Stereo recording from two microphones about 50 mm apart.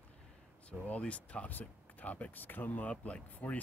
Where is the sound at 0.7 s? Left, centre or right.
Left.